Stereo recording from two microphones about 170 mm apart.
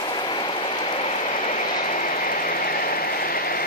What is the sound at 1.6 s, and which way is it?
Vehicle, 55° left (ahead or behind).